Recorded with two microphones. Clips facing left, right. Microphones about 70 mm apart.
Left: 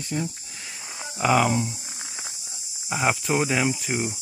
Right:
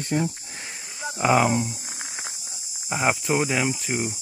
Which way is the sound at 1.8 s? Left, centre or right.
Right.